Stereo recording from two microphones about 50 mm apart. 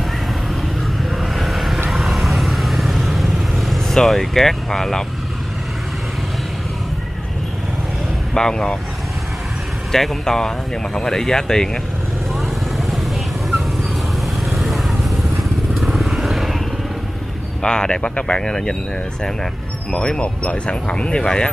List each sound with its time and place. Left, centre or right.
1.1 s vehicle: centre
8.4 s speech: centre
9.9 s speech: centre
12.4 s vehicle: centre
14.5 s vehicle: centre
17.6 s speech: centre
19.9 s speech: centre